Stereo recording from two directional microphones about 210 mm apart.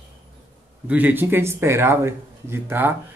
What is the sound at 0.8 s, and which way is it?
Speech, 10° right (ahead or behind).